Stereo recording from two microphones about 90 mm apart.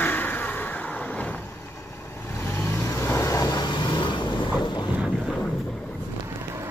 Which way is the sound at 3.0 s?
35° left (ahead or behind).